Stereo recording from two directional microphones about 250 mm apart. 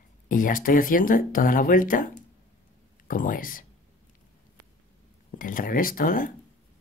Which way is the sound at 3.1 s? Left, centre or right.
Left.